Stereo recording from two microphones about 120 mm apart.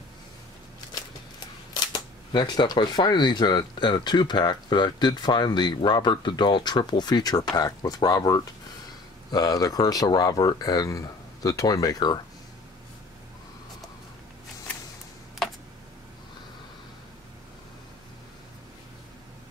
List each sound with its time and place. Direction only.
2.3 s speech: 35° left (ahead or behind)